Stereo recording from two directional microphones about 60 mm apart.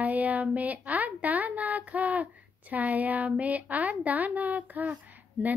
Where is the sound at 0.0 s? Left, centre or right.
Right.